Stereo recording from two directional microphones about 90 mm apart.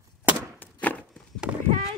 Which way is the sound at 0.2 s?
25° right (ahead or behind).